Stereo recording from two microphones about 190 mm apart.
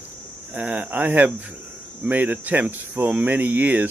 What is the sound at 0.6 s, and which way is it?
Cricket, 5° right (ahead or behind).